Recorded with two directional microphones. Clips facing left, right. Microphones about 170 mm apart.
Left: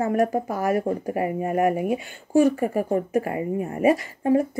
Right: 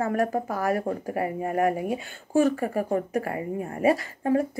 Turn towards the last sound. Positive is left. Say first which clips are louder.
# left 3 dB
turn(degrees=15)  # may be behind; listen again after turning